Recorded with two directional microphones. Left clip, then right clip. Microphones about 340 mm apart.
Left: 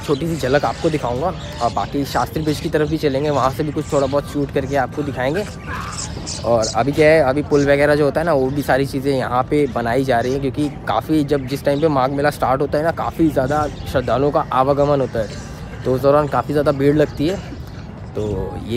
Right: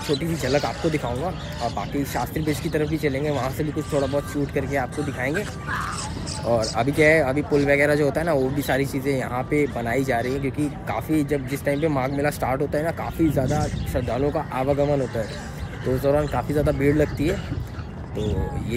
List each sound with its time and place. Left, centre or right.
0.1 s speech: centre
6.4 s speech: centre